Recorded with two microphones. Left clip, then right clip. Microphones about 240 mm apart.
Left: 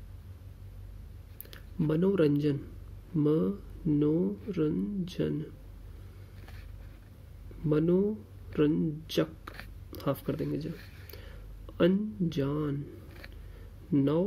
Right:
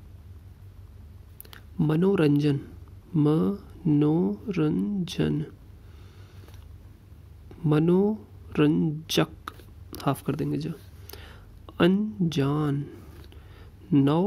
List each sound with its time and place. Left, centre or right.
1.5 s speech: right
7.7 s speech: right
13.9 s speech: right